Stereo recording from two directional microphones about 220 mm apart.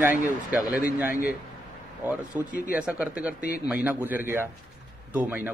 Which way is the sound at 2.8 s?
5° right (ahead or behind).